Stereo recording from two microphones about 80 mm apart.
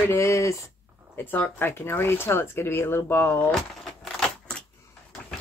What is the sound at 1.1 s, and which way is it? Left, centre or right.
Speech, left.